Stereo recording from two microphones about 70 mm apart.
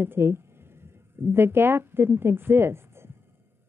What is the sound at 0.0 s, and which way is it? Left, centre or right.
Speech, right.